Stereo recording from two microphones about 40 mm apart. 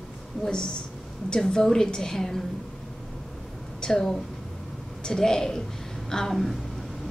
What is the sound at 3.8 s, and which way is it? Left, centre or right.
A woman's voice, centre.